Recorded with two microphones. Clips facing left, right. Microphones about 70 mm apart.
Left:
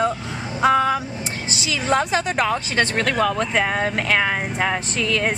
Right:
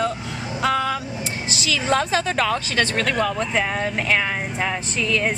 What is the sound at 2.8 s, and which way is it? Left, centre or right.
Speech, left.